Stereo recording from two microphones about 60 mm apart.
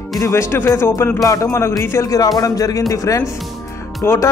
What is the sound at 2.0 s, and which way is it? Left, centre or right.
Speech, left.